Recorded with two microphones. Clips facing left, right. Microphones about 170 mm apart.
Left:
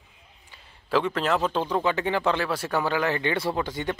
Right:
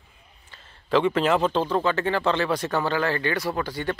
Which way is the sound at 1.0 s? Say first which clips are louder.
Right 5 dB; centre (ahead or behind).